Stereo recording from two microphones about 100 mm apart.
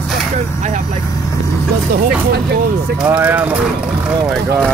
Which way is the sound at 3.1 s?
20° right (ahead or behind).